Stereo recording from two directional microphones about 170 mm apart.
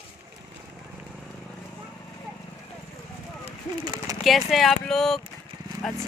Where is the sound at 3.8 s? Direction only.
25° right (ahead or behind).